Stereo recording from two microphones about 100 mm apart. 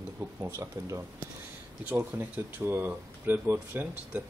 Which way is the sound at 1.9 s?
15° right (ahead or behind).